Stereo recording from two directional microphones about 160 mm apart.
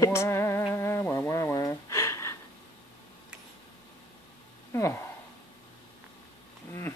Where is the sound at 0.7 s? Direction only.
15° left (ahead or behind).